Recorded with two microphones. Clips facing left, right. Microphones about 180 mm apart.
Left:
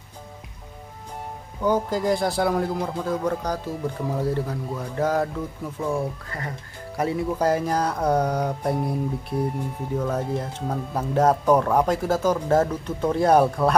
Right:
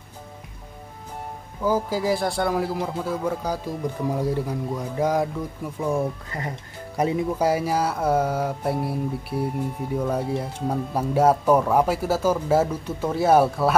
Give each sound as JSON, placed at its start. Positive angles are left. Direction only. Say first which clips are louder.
{"t": 1.6, "sound": "speech", "louder": "left 1 dB", "side_deg": -5}